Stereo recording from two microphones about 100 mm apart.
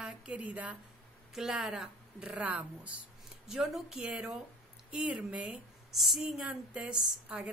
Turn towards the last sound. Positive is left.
turn(degrees=-10)  # may be behind; listen again after turning